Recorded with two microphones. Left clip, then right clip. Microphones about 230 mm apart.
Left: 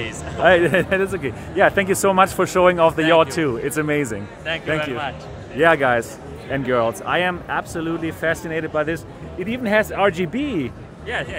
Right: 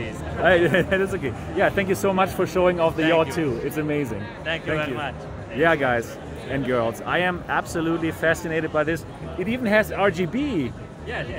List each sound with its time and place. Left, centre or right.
0.4 s speech: left
1.6 s speech: left
4.5 s speech: centre
5.6 s speech: left
7.4 s speech: centre
9.9 s speech: left